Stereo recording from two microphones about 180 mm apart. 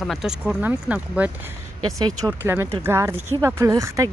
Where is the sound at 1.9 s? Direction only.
20° right (ahead or behind).